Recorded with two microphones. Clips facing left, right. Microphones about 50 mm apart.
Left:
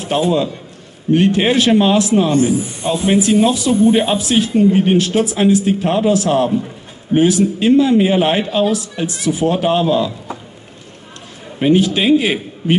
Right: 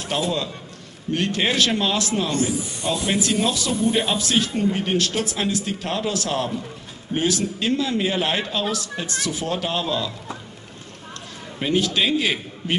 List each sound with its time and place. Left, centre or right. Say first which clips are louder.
0.0 s a man's voice: left 8 dB; left
11.6 s speech: left 8 dB; centre